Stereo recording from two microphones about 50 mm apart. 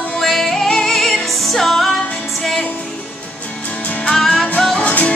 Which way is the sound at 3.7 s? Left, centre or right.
Left.